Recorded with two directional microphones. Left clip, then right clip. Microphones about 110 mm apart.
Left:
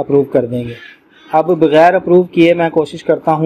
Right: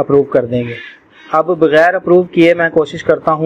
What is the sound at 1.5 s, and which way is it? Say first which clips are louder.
A man's voice: left 1 dB; 5° left (ahead or behind).